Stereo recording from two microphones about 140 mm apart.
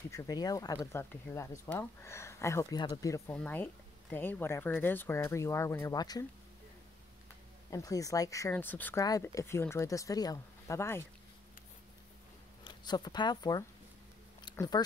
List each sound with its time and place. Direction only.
0.1 s speech: 25° left (ahead or behind)
3.3 s speech: 10° left (ahead or behind); by 6.2 s 30° left (ahead or behind)
7.7 s speech: 25° left (ahead or behind)
9.0 s speech: 25° left (ahead or behind)
12.6 s speech: 30° left (ahead or behind)
14.4 s a sound: 30° left (ahead or behind)